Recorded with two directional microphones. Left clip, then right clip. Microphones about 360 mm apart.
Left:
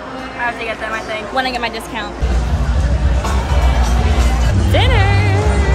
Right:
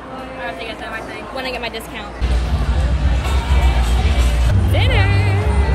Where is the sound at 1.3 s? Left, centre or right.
Centre.